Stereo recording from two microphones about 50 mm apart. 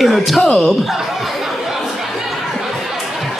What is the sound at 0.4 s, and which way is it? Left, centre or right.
Speech, centre.